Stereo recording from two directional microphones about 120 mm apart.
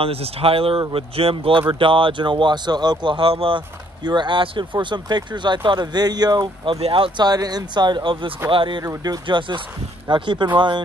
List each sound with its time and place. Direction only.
0.0 s speech: 55° right (ahead or behind)
7.2 s speech: 35° right (ahead or behind)
8.8 s speech: 30° right (ahead or behind)